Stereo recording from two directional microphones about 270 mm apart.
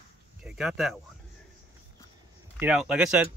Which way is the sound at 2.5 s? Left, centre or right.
Centre.